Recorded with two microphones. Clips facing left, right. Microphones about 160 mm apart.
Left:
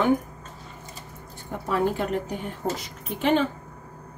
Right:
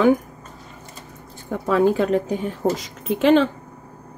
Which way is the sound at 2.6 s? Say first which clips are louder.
Right 7 dB; 80° right.